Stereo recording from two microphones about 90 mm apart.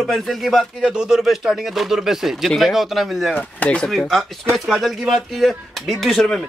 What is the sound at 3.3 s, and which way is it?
Speech, 15° left (ahead or behind).